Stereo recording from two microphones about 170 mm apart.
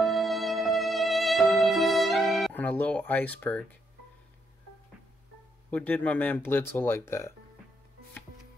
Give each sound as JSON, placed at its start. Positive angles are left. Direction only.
{"t": 0.0, "sound": "music", "side_deg": 0}
{"t": 2.5, "sound": "speech", "side_deg": 10}
{"t": 5.7, "sound": "speech", "side_deg": 10}